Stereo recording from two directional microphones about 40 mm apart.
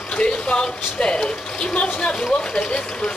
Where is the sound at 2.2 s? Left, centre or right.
Centre.